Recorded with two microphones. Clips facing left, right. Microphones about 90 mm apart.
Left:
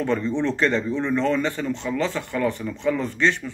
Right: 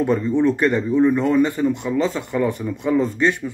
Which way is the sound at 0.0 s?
15° right (ahead or behind).